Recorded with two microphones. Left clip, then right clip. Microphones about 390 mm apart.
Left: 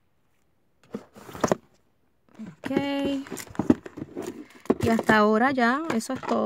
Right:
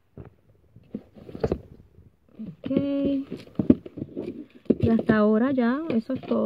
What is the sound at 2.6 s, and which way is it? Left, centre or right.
Speech, left.